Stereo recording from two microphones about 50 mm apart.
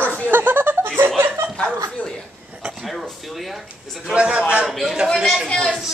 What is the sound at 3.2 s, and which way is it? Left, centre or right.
Speech, centre.